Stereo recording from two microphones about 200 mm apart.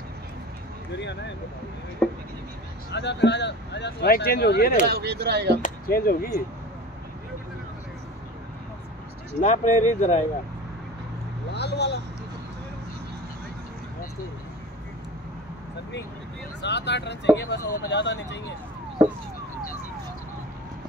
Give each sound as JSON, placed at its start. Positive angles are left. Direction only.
{"t": 2.0, "sound": "a sound", "side_deg": 5}
{"t": 2.9, "sound": "speech", "side_deg": 60}
{"t": 4.8, "sound": "speech", "side_deg": -55}
{"t": 5.6, "sound": "speech", "side_deg": 50}
{"t": 9.4, "sound": "speech", "side_deg": 35}
{"t": 11.5, "sound": "speech", "side_deg": 55}
{"t": 16.6, "sound": "speech", "side_deg": 60}